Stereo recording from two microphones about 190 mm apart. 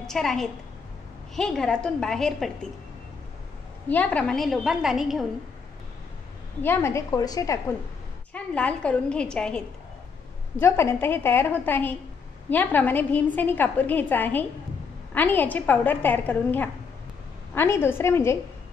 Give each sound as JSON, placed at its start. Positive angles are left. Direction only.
{"t": 0.0, "sound": "a woman's voice", "side_deg": 0}
{"t": 3.9, "sound": "a woman's voice", "side_deg": 5}
{"t": 6.6, "sound": "a woman's voice", "side_deg": 10}
{"t": 8.3, "sound": "a woman's voice", "side_deg": 5}
{"t": 10.6, "sound": "a woman's voice", "side_deg": 15}